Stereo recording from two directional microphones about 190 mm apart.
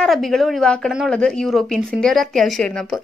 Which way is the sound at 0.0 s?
Centre (ahead or behind).